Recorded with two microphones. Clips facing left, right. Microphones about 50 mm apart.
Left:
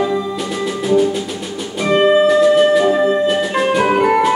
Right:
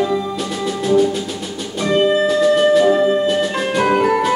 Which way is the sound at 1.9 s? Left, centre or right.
Centre.